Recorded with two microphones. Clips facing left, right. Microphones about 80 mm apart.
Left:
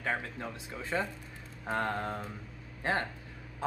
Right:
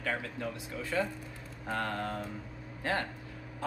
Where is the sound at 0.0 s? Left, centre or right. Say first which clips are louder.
Even; left.